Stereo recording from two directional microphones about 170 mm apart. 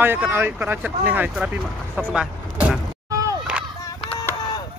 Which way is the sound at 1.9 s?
5° right (ahead or behind).